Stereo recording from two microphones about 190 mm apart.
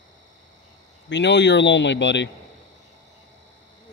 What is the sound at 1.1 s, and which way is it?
Speech, 70° left (ahead or behind).